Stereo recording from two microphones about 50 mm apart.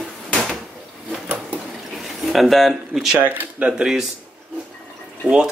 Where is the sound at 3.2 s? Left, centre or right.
Right.